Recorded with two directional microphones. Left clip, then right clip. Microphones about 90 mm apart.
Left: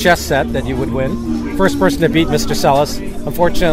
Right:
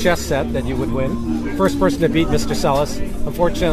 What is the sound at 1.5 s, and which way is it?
Speech, 40° left (ahead or behind).